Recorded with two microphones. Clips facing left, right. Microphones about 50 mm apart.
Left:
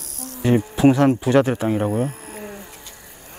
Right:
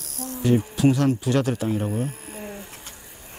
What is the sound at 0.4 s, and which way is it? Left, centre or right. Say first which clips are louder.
Speech: left 4 dB; left.